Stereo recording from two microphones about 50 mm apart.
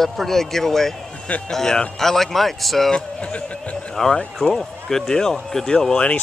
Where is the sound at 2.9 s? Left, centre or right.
Centre.